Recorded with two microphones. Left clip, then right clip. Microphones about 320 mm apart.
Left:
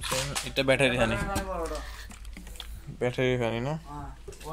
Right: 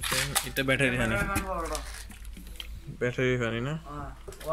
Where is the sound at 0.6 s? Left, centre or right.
Centre.